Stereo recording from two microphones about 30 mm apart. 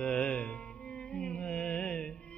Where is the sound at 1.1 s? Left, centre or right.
Left.